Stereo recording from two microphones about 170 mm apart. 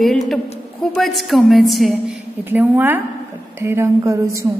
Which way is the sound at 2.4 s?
10° right (ahead or behind).